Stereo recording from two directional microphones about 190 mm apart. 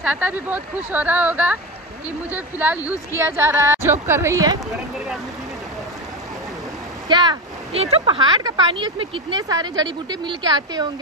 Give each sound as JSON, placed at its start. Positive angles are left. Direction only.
{"t": 0.0, "sound": "speech", "side_deg": -5}
{"t": 7.1, "sound": "speech", "side_deg": -25}